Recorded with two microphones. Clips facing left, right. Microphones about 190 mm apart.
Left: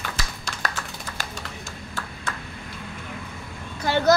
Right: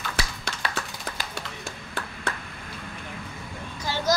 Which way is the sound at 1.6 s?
60° right (ahead or behind).